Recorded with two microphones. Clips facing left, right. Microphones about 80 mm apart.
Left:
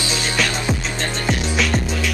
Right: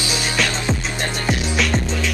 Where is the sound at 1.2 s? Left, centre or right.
Centre.